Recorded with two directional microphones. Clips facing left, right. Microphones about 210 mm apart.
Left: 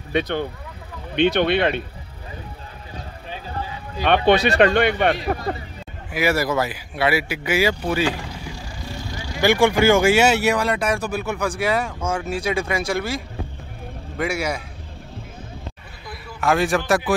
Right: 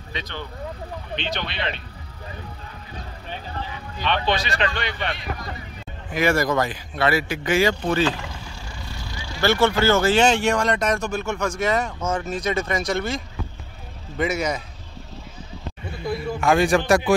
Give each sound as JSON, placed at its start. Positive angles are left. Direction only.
{"t": 0.1, "sound": "speech", "side_deg": 55}
{"t": 4.0, "sound": "speech", "side_deg": 55}
{"t": 5.1, "sound": "speech", "side_deg": 35}
{"t": 6.1, "sound": "speech", "side_deg": 5}
{"t": 14.1, "sound": "speech", "side_deg": 10}
{"t": 16.3, "sound": "a man's voice", "side_deg": 0}